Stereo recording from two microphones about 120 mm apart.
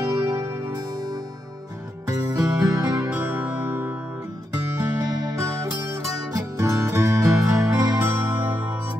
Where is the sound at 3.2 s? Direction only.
20° right (ahead or behind).